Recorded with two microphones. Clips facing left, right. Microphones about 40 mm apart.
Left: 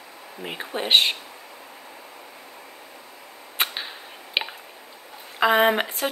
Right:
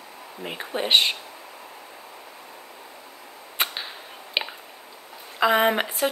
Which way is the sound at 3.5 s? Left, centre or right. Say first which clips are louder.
Left 1 dB; centre.